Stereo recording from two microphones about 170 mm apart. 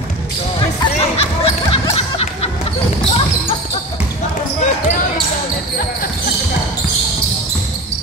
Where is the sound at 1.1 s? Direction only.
35° left (ahead or behind).